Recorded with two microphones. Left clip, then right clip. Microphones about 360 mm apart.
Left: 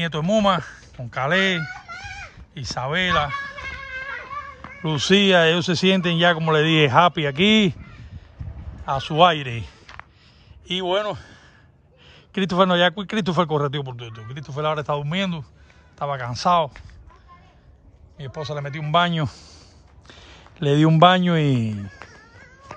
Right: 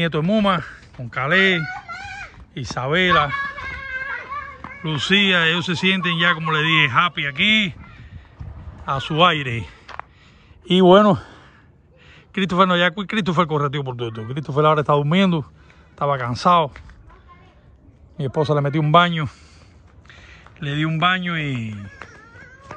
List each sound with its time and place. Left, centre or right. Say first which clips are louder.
0.0 s a man's voice: even; centre
8.8 s a man's voice: even; centre
18.1 s a man's voice: right 10 dB; centre
22.1 s a sound: right 4 dB; left